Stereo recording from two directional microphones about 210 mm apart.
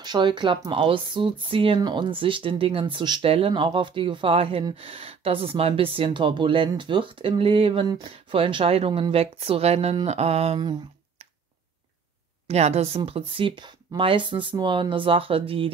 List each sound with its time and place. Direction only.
0.0 s speech: 20° right (ahead or behind)
12.4 s speech: 30° right (ahead or behind)